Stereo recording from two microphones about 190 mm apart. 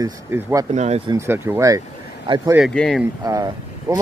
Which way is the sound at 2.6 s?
Centre (ahead or behind).